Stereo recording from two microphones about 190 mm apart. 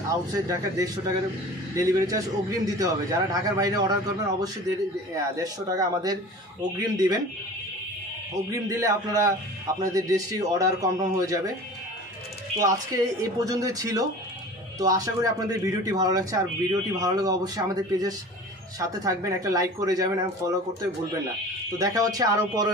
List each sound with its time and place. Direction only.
0.1 s speech: 20° right (ahead or behind)
5.1 s speech: 20° right (ahead or behind)
8.5 s speech: 15° right (ahead or behind)
12.5 s speech: 15° right (ahead or behind)